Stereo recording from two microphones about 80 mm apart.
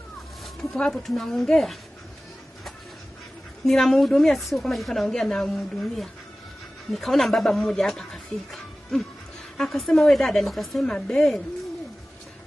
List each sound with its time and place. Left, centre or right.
0.6 s a woman's voice: centre
3.6 s a woman's voice: centre